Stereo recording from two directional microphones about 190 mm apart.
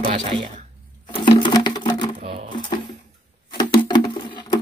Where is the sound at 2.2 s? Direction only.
35° right (ahead or behind).